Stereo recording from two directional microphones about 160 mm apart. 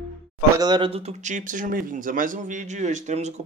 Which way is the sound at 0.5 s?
25° right (ahead or behind).